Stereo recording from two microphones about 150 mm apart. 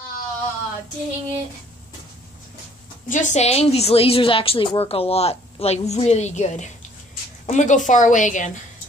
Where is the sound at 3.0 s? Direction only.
55° left (ahead or behind).